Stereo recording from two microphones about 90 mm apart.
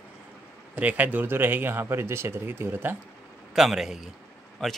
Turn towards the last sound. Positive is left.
turn(degrees=5)  # may be behind; listen again after turning